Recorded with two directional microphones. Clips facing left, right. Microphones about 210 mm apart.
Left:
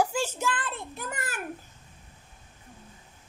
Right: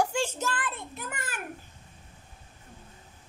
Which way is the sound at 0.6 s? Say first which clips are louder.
Even; 30° left (ahead or behind).